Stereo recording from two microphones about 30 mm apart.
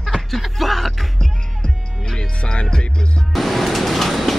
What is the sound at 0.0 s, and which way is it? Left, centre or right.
Music, centre.